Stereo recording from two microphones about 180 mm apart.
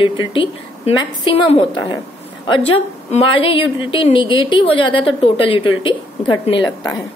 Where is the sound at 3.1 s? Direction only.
30° left (ahead or behind).